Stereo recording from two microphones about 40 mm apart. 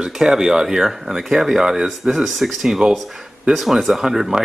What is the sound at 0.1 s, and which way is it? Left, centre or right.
Speech, centre.